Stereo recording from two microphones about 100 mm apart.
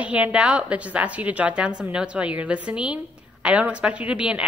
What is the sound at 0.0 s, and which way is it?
A woman's voice, 15° right (ahead or behind).